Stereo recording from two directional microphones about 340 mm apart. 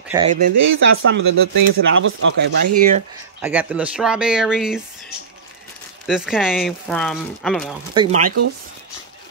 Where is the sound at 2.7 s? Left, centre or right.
Right.